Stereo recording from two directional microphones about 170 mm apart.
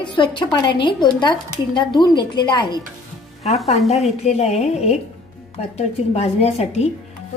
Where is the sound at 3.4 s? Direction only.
40° left (ahead or behind).